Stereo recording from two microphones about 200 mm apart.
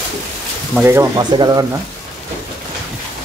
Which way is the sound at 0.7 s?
10° right (ahead or behind).